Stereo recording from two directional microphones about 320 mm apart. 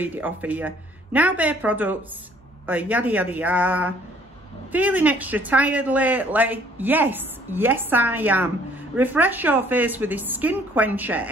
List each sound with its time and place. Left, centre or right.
0.0 s speech: centre